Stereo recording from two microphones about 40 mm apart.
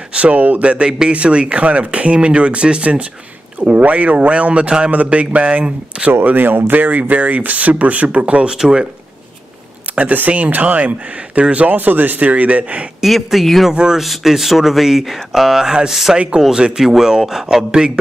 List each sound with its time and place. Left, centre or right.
0.1 s speech: right
6.2 s speech: right
8.5 s speech: centre
9.9 s a sound: right
10.3 s speech: right
13.0 s speech: centre
16.3 s speech: centre